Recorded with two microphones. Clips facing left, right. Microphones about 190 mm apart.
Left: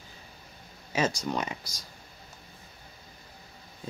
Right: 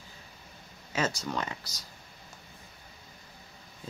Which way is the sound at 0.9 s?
15° left (ahead or behind).